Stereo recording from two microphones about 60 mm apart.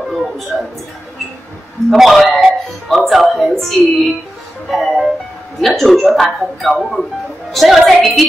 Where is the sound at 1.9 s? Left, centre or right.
Centre.